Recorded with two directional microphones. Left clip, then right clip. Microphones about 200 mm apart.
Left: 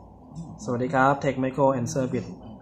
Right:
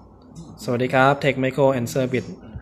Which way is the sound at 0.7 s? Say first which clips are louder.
Right 4 dB; 45° right (ahead or behind).